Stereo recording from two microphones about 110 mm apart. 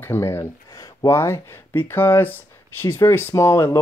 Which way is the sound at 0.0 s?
20° left (ahead or behind).